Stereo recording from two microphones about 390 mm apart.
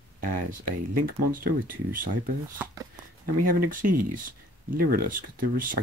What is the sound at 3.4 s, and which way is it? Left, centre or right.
Speech, right.